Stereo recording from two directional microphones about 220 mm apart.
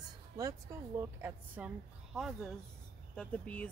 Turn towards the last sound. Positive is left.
turn(degrees=5)  # may be behind; listen again after turning